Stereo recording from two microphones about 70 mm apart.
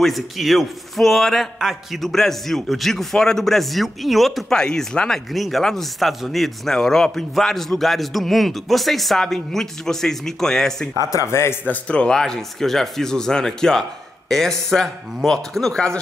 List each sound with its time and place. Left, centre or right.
0.0 s a man's voice: centre
4.6 s a man's voice: centre
11.1 s speech: left
11.6 s speech: centre